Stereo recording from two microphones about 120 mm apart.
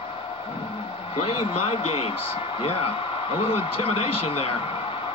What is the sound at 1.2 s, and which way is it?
A man's voice, 60° left (ahead or behind).